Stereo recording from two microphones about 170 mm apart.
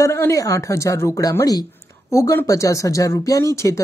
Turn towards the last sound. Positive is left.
turn(degrees=15)  # may be behind; listen again after turning